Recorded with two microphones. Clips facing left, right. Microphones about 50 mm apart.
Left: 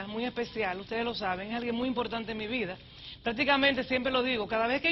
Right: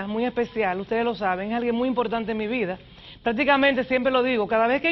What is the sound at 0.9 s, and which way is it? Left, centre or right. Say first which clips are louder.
A woman's voice: right 8 dB; centre.